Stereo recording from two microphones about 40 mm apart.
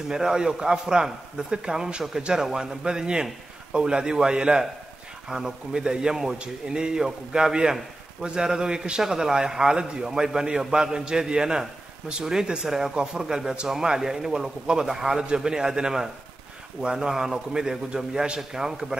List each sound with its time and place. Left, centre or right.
0.1 s a man's voice: centre